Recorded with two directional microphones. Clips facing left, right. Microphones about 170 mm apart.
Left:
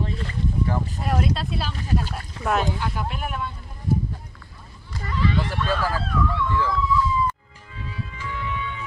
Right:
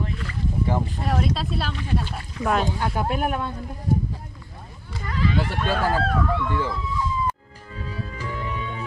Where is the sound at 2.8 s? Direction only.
50° right (ahead or behind).